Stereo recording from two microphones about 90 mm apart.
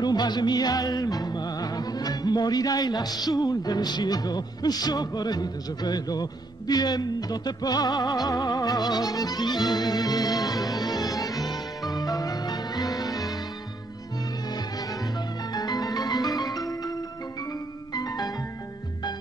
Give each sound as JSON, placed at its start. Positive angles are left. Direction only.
{"t": 0.0, "sound": "music", "side_deg": 50}
{"t": 14.5, "sound": "music", "side_deg": 45}